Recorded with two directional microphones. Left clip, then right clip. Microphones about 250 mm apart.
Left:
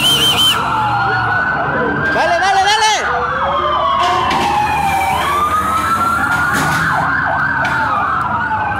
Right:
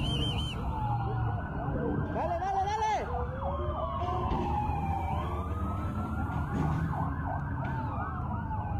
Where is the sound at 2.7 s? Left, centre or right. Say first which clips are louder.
Left 18 dB; centre.